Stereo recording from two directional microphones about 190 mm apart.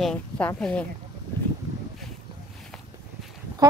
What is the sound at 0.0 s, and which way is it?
Speech, 5° left (ahead or behind).